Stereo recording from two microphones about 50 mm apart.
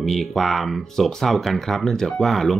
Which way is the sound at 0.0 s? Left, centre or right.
Centre.